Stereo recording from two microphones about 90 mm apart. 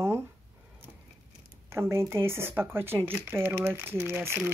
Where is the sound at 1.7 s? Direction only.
30° right (ahead or behind).